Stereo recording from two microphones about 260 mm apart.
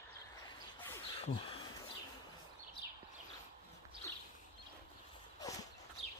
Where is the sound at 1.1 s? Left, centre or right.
Left.